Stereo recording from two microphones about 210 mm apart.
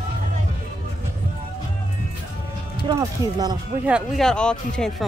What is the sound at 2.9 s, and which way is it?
Speech, 20° right (ahead or behind).